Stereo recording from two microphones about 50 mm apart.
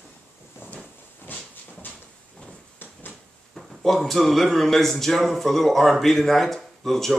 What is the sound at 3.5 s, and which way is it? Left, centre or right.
A man's voice, centre.